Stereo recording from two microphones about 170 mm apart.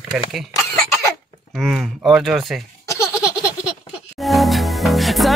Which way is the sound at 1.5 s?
Centre (ahead or behind).